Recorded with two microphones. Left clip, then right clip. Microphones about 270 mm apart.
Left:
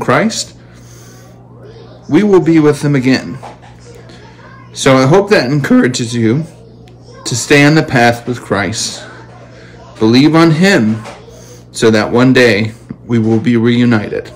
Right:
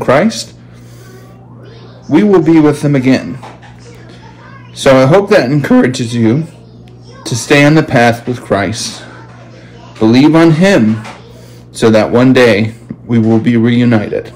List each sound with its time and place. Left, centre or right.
0.0 s speech: centre
2.0 s a man's voice: centre
4.7 s a man's voice: centre
11.8 s a man's voice: centre